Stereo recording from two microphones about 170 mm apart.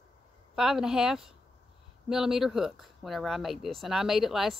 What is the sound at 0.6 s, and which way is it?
Speech, 5° right (ahead or behind).